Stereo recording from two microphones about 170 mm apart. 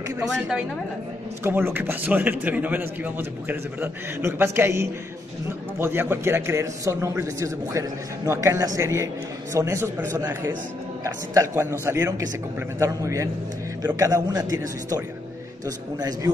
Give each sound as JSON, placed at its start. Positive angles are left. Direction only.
{"t": 1.4, "sound": "a man's voice", "side_deg": -10}